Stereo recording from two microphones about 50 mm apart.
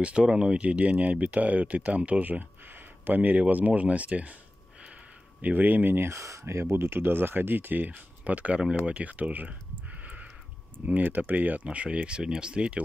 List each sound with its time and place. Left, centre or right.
0.0 s speech: right
5.4 s speech: right
6.0 s speech: right
6.4 s speech: right
8.5 s speech: centre
11.0 s speech: right